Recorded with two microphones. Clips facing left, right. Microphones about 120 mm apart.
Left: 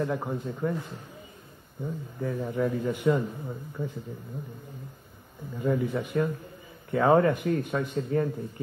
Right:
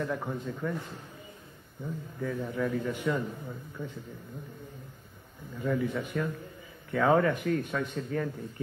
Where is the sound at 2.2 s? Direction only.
25° left (ahead or behind).